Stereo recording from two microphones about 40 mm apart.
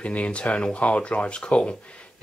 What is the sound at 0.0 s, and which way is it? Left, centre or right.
Speech, left.